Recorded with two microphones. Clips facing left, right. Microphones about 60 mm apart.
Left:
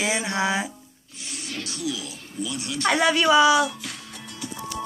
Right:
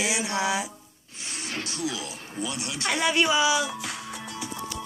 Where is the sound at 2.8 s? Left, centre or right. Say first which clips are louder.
Left 4 dB; left.